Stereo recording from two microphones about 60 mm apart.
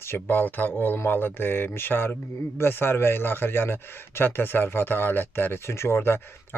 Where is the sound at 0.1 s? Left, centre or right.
Left.